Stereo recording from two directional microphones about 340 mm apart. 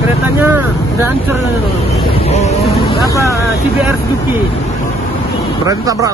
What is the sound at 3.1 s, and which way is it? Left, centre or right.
Speech, centre.